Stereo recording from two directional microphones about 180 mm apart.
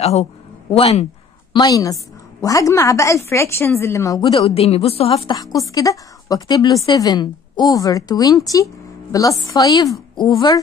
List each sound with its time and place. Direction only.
0.0 s a man's voice: 35° left (ahead or behind)
1.5 s a woman's voice: 20° left (ahead or behind)